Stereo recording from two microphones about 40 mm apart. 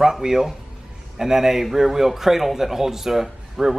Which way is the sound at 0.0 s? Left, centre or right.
Centre.